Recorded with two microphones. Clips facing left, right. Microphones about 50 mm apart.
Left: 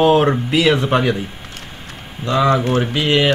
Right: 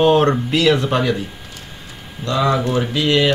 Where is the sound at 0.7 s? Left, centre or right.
Left.